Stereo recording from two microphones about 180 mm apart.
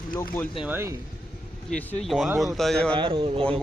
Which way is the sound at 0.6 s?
10° right (ahead or behind).